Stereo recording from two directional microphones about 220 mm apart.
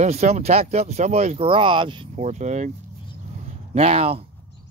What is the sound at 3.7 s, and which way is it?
Speech, 25° right (ahead or behind).